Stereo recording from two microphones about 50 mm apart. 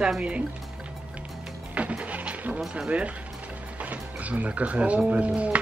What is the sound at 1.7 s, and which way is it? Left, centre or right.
Music, right.